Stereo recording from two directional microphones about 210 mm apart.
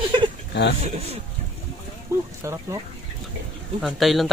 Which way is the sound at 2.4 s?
15° right (ahead or behind).